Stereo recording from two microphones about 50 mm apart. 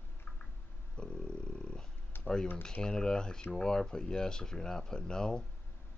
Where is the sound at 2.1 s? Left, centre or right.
Left.